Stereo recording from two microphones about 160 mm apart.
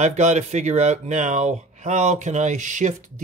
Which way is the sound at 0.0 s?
45° right (ahead or behind).